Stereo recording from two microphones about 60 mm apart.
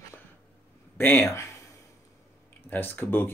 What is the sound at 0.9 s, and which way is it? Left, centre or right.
Speech, left.